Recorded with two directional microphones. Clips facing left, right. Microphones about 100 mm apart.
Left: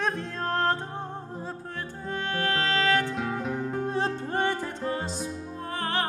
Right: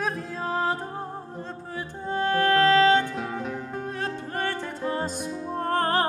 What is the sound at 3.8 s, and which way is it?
Music, 30° left (ahead or behind).